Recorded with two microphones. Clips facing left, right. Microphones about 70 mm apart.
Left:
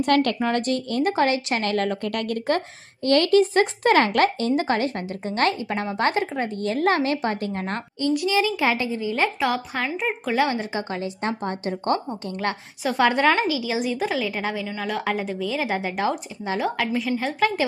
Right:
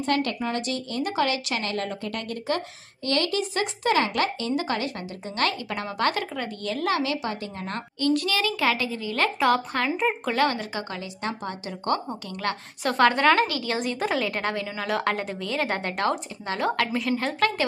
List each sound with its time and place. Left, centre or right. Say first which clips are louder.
0.0 s a woman's voice: left 5 dB; left
0.6 s a woman's voice: left 5 dB; left
8.0 s a woman's voice: left 2 dB; centre
9.4 s a woman's voice: right 2 dB; centre
10.3 s a woman's voice: left 2 dB; centre
13.0 s a woman's voice: even; centre